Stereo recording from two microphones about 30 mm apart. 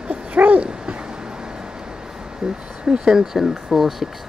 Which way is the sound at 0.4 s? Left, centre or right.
Right.